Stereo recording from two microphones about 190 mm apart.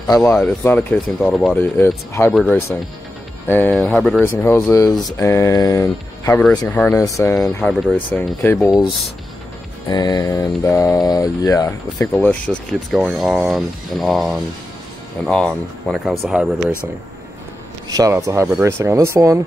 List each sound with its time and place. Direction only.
0.1 s speech: 15° left (ahead or behind)
7.7 s speech: centre (ahead or behind)
8.1 s speech: 10° left (ahead or behind)
9.8 s speech: 20° left (ahead or behind); by 16.7 s 5° right (ahead or behind)
17.8 s speech: 20° right (ahead or behind)